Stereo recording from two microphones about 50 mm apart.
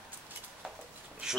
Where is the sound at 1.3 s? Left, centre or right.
Centre.